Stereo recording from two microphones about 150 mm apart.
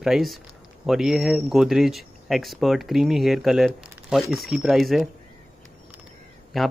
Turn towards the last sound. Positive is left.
turn(degrees=0)  # may be behind; listen again after turning